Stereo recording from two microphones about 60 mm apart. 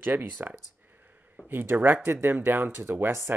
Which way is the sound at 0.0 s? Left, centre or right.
Right.